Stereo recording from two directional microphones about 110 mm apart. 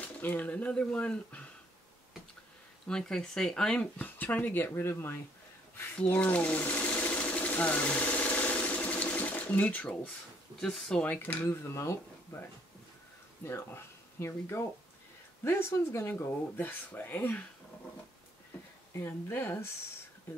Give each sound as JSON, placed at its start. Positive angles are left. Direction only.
{"t": 0.0, "sound": "speech", "side_deg": 15}
{"t": 2.9, "sound": "speech", "side_deg": 5}
{"t": 5.9, "sound": "sewing machine", "side_deg": 15}
{"t": 10.6, "sound": "speech", "side_deg": 5}
{"t": 13.5, "sound": "speech", "side_deg": 25}
{"t": 18.9, "sound": "speech", "side_deg": 20}